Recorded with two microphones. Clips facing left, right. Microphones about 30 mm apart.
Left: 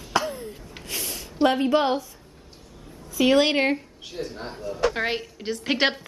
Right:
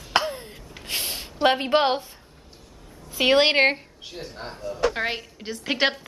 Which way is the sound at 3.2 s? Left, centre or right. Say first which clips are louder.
Right 1 dB; right.